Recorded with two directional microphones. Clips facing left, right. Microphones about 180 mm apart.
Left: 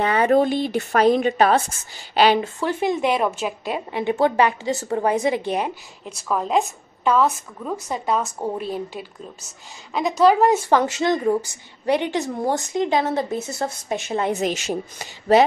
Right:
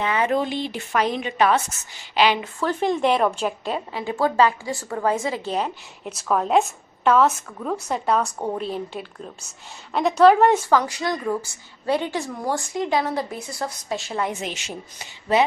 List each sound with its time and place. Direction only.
0.0 s a woman's voice: 40° left (ahead or behind)
2.6 s a woman's voice: 10° left (ahead or behind)
3.9 s a woman's voice: 20° left (ahead or behind)
6.0 s a woman's voice: centre (ahead or behind)
10.7 s a woman's voice: 25° left (ahead or behind)
14.3 s a woman's voice: 40° left (ahead or behind)